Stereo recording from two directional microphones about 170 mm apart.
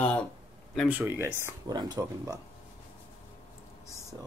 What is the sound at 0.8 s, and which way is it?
Speech, 10° right (ahead or behind).